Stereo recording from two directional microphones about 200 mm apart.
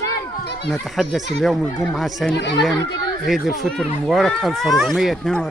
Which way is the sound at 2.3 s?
60° left (ahead or behind).